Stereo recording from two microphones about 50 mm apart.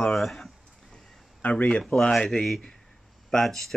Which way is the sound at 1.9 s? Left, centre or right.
Centre.